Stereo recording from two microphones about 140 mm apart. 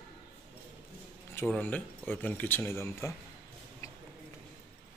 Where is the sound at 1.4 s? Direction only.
15° left (ahead or behind).